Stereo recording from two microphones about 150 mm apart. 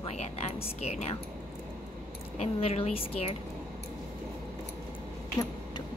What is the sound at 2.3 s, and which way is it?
Speech, 45° left (ahead or behind).